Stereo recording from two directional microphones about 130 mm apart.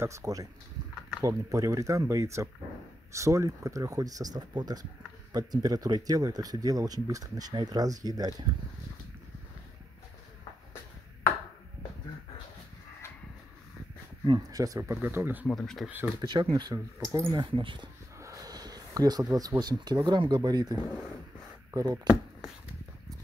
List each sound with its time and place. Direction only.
0.0 s speech: 25° right (ahead or behind)
14.2 s speech: 30° right (ahead or behind); by 15.5 s 15° right (ahead or behind)
15.5 s speech: 5° left (ahead or behind)
16.2 s speech: 35° right (ahead or behind)
17.5 s speech: 40° right (ahead or behind)
18.2 s a sound: 25° right (ahead or behind)
19.6 s speech: 30° right (ahead or behind)